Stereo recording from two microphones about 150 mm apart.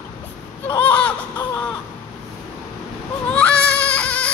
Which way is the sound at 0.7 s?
10° left (ahead or behind).